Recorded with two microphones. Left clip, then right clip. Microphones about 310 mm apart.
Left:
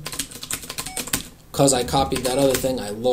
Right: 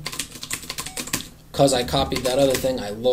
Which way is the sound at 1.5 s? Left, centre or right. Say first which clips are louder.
Even; centre.